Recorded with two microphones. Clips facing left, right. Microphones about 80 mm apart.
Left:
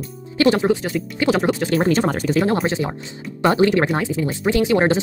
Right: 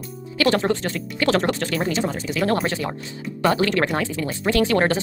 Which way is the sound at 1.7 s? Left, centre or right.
Left.